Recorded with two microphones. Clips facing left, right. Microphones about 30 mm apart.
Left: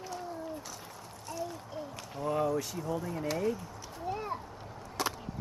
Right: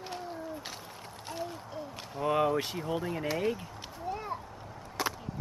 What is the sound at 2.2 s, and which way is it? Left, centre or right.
Speech, right.